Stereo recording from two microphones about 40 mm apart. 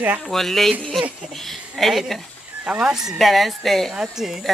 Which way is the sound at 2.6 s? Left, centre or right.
Right.